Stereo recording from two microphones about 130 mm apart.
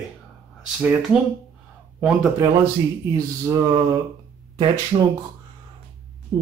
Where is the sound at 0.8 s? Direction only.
10° right (ahead or behind).